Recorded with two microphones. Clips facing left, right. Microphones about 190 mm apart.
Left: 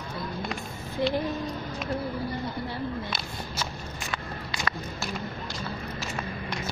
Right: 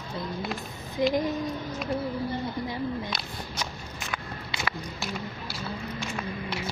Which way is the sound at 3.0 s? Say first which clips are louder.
Even; centre (ahead or behind).